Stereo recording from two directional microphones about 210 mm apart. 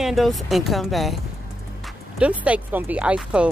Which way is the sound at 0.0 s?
Centre (ahead or behind).